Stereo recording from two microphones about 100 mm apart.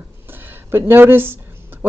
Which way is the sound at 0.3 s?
20° right (ahead or behind).